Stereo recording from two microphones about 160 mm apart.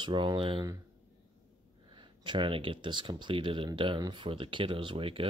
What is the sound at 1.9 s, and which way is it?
Speech, 30° right (ahead or behind).